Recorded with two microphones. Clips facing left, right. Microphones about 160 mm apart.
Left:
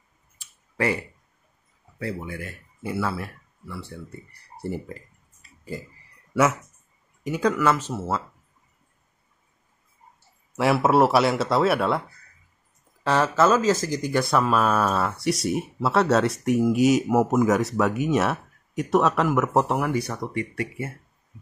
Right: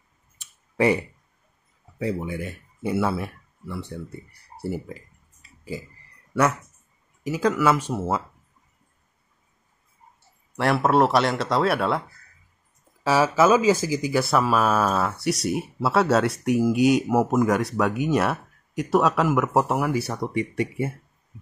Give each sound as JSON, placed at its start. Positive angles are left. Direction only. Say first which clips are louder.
{"t": 0.4, "sound": "clicking", "louder": "right 5 dB", "side_deg": -20}
{"t": 2.0, "sound": "speech", "louder": "right 4 dB", "side_deg": -20}
{"t": 4.6, "sound": "speech", "louder": "right 1 dB", "side_deg": -5}
{"t": 6.3, "sound": "speech", "louder": "left 1 dB", "side_deg": 5}
{"t": 10.5, "sound": "speech", "louder": "left 1 dB", "side_deg": 5}
{"t": 13.0, "sound": "speech", "louder": "right 1 dB", "side_deg": -5}